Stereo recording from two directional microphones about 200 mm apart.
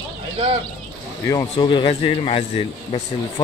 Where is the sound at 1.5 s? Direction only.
25° left (ahead or behind).